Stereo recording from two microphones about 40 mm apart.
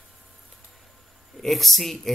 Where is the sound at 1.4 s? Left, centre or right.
Centre.